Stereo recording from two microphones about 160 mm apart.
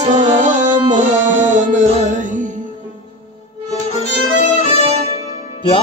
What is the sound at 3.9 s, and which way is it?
Music, 45° left (ahead or behind).